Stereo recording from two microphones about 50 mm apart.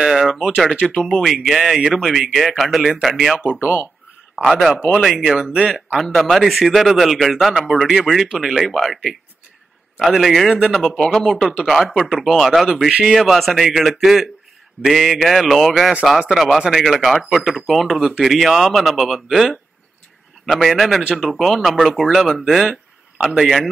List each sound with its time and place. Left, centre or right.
0.0 s a sound: centre
0.8 s speech: centre
1.1 s speech: centre
3.5 s speech: right
4.4 s speech: centre